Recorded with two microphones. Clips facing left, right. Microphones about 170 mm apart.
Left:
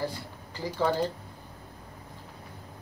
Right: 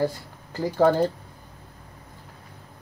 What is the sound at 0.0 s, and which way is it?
Speech, 45° right (ahead or behind).